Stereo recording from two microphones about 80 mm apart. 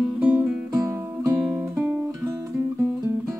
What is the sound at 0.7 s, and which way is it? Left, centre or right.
Music, right.